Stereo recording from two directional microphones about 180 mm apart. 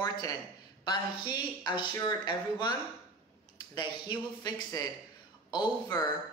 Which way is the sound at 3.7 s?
25° left (ahead or behind).